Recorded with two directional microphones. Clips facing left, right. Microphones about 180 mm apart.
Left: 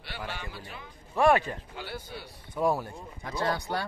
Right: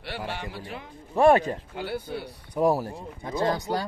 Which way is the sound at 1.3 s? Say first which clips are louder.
Right 4 dB; 35° right (ahead or behind).